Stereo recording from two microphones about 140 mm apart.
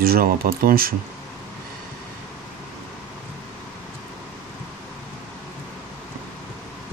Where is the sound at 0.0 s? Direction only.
90° right.